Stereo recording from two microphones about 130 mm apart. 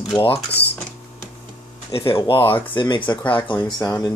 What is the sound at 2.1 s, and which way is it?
Speech, 40° left (ahead or behind).